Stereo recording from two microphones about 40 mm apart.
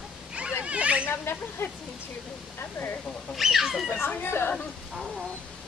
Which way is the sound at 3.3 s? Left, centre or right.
Centre.